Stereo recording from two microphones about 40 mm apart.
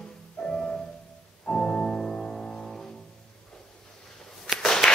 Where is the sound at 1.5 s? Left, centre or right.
Centre.